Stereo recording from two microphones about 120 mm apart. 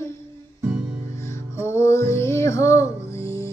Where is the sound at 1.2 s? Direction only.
20° left (ahead or behind).